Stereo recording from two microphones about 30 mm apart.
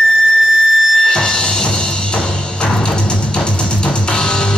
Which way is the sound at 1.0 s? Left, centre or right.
Left.